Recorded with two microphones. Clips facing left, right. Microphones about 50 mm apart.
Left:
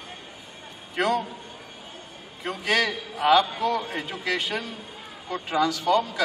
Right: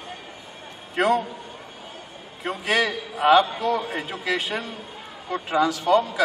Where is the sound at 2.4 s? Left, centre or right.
Centre.